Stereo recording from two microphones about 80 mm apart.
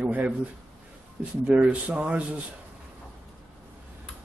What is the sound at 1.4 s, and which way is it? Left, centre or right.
Speech, centre.